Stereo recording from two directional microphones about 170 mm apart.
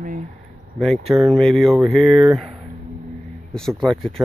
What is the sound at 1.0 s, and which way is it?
Speech, centre (ahead or behind).